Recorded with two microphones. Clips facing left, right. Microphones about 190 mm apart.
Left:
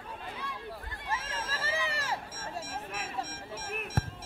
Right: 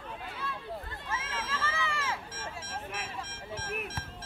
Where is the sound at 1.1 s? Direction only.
35° left (ahead or behind).